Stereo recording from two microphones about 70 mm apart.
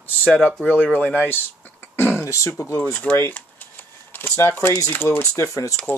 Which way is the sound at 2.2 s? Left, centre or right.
Left.